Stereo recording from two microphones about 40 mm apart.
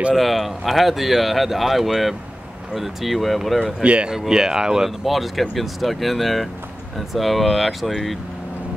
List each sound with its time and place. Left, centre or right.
0.1 s speech: centre
3.8 s speech: right
4.1 s speech: centre
5.0 s speech: centre